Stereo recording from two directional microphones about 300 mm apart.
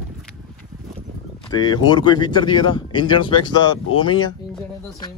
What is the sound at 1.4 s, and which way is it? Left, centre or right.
Speech, centre.